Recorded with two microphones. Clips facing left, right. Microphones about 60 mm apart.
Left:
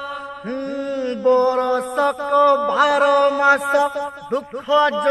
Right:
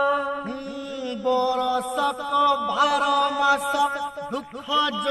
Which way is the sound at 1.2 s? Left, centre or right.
Left.